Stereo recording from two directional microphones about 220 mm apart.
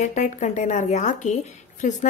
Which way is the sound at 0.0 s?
35° left (ahead or behind).